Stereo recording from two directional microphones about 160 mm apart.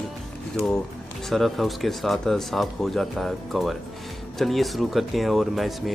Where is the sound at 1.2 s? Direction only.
Centre (ahead or behind).